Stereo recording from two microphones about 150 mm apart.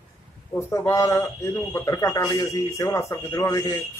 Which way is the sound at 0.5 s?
20° left (ahead or behind).